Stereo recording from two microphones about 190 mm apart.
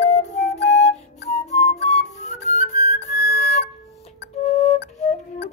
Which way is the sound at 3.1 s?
55° left (ahead or behind).